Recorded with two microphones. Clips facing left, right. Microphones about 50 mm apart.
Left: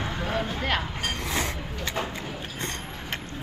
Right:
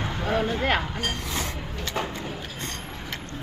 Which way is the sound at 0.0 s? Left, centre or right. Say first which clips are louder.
Right 3 dB; centre.